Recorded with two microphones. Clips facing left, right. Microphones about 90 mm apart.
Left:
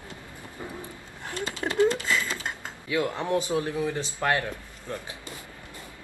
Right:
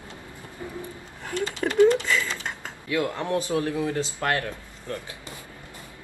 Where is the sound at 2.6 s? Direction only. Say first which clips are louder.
Right 1 dB; 20° left (ahead or behind).